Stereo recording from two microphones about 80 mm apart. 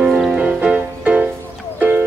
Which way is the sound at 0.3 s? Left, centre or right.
Centre.